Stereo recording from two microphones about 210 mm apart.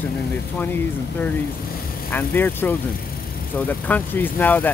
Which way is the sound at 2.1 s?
10° left (ahead or behind).